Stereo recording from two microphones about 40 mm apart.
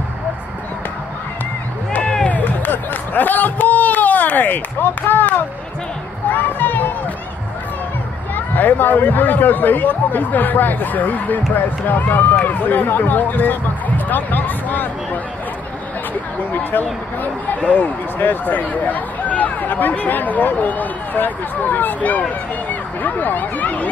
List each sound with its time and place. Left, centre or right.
2.2 s music: left
2.6 s a sound: left
8.5 s speech: left
16.5 s speech: left